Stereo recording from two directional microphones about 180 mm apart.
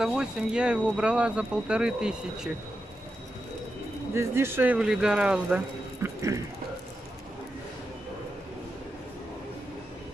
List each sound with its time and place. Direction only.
0.0 s speech: 5° right (ahead or behind)
4.1 s speech: 15° right (ahead or behind)
6.0 s a sound: 15° right (ahead or behind)